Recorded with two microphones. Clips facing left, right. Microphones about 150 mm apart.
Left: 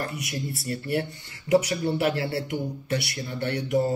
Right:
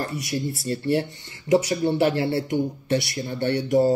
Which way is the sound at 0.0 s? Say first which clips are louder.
Right 4 dB; 30° right (ahead or behind).